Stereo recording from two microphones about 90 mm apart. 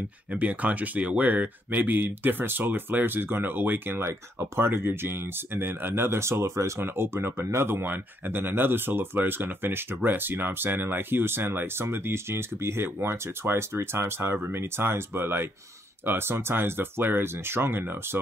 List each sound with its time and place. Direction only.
0.3 s speech: 15° right (ahead or behind)